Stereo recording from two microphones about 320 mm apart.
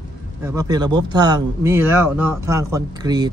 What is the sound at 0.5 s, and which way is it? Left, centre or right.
A man's voice, centre.